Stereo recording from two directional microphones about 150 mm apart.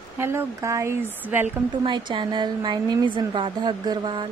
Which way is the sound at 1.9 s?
30° right (ahead or behind).